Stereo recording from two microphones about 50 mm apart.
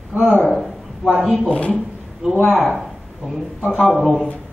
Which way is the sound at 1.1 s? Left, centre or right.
Centre.